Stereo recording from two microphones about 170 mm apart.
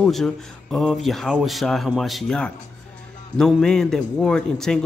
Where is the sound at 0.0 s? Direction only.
Centre (ahead or behind).